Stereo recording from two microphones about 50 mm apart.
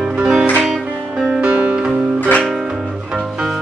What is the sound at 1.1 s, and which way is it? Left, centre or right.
Music, right.